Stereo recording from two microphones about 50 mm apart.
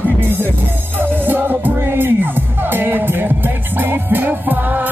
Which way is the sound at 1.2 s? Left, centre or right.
Right.